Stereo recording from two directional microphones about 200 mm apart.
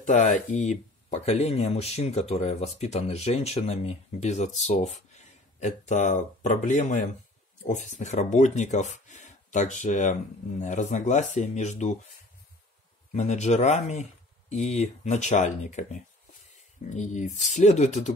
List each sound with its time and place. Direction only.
0.0 s speech: 40° left (ahead or behind)
13.1 s speech: 35° left (ahead or behind)